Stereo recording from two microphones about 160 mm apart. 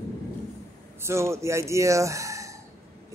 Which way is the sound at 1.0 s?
15° right (ahead or behind).